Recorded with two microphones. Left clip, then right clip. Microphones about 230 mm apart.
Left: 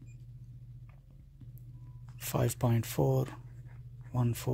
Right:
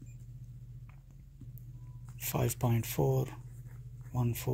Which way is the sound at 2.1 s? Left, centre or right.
Left.